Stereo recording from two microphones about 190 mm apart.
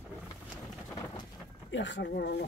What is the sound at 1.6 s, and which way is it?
Speech, 70° left (ahead or behind).